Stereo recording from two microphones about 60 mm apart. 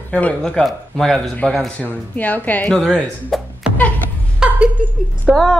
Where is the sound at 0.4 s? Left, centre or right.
Centre.